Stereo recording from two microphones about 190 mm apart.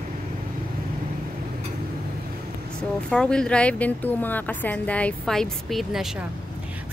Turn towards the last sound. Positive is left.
turn(degrees=0)  # may be behind; listen again after turning